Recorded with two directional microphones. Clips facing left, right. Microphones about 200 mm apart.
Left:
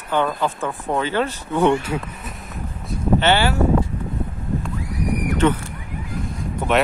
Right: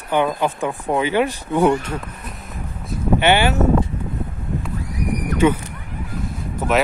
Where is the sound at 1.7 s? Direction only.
5° left (ahead or behind).